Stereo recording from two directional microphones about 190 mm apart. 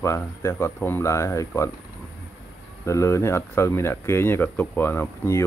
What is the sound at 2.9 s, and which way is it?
Speech, 15° left (ahead or behind).